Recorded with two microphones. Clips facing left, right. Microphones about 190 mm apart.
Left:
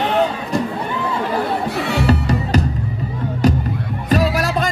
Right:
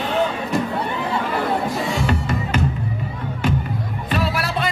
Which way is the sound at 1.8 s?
65° left (ahead or behind).